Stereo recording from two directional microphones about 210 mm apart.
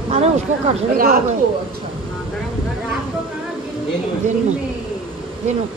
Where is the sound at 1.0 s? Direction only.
45° right (ahead or behind).